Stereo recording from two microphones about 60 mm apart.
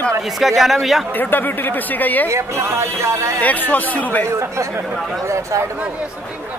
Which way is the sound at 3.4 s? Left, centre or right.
Left.